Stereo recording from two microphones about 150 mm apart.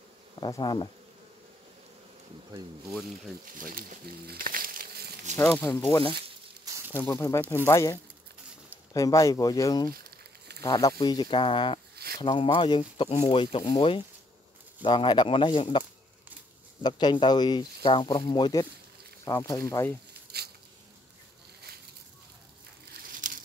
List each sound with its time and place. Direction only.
0.4 s speech: 30° left (ahead or behind)
3.5 s speech: 65° right (ahead or behind); by 5.1 s 80° right
5.9 s speech: 35° left (ahead or behind)
6.6 s a sound: 20° right (ahead or behind)
7.0 s speech: 15° left (ahead or behind); by 11.8 s 35° left (ahead or behind)
11.9 s a sound: 90° right
12.2 s speech: 30° left (ahead or behind)
16.8 s speech: 30° left (ahead or behind)
20.3 s insect: 90° right
22.9 s a sound: 65° right (ahead or behind)